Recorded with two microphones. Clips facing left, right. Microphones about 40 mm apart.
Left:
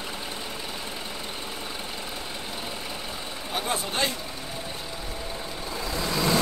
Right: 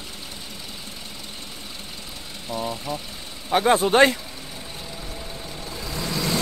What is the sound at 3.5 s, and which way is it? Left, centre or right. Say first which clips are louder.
Speech: right 12 dB; right.